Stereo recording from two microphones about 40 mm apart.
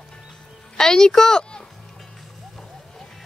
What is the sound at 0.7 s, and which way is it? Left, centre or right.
Speech, centre.